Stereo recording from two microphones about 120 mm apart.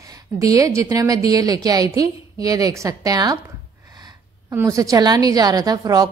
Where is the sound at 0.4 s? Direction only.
30° right (ahead or behind).